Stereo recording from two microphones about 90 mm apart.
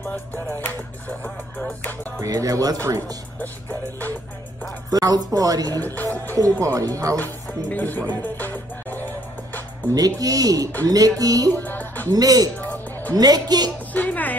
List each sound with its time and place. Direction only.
0.0 s music: 5° left (ahead or behind)
0.6 s music: 20° left (ahead or behind)
2.1 s speech: 40° right (ahead or behind)
4.9 s speech: 45° right (ahead or behind)
5.8 s music: 20° left (ahead or behind)
6.6 s speech: 40° right (ahead or behind)
7.7 s music: 20° left (ahead or behind)
9.9 s speech: 45° right (ahead or behind)
11.5 s music: 20° left (ahead or behind)
12.1 s speech: 45° right (ahead or behind)
13.9 s music: 20° left (ahead or behind)